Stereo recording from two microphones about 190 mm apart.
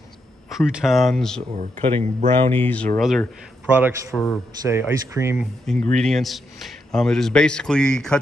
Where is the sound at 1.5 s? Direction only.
30° right (ahead or behind).